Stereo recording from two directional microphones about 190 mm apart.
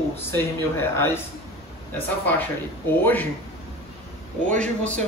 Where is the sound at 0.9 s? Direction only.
15° left (ahead or behind).